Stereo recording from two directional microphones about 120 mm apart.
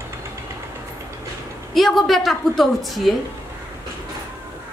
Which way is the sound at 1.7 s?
Centre (ahead or behind).